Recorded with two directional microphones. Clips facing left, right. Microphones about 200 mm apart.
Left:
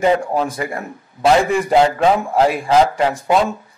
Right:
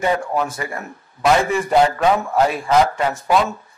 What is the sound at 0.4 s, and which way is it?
A man's voice, 30° left (ahead or behind).